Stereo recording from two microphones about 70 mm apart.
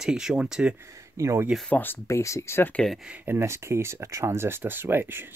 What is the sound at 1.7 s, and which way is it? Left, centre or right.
Speech, left.